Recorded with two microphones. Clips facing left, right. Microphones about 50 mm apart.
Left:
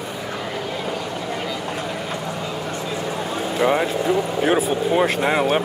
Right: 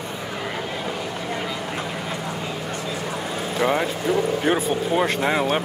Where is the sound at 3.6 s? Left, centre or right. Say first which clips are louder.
Left 3 dB; centre.